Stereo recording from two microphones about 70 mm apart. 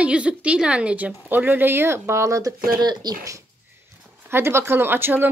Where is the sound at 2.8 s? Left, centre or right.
Right.